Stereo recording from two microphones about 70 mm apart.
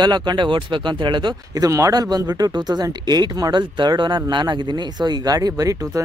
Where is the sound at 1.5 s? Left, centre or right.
Right.